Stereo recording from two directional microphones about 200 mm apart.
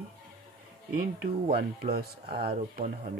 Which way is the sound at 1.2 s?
50° right (ahead or behind).